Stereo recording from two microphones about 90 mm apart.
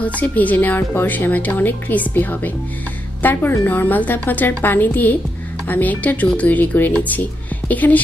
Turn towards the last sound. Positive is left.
turn(degrees=20)  # may be behind; listen again after turning